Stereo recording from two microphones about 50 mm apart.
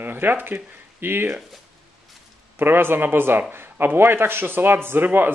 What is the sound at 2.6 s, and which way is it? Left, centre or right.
A man's voice, right.